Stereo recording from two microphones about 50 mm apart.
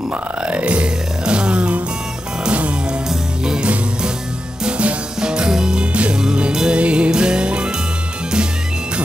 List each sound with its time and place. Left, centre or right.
0.4 s music: right
3.1 s music: centre